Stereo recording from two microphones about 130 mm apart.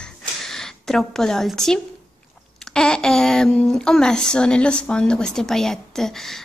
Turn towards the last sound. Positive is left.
turn(degrees=5)  # may be behind; listen again after turning